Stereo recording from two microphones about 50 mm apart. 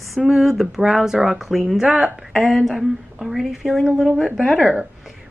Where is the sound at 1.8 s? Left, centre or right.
Right.